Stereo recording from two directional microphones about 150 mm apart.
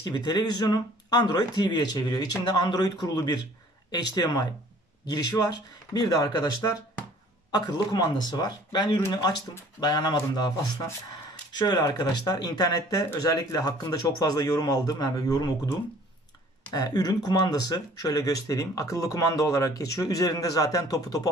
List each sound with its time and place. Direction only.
0.0 s speech: 25° left (ahead or behind)
16.7 s speech: 25° left (ahead or behind)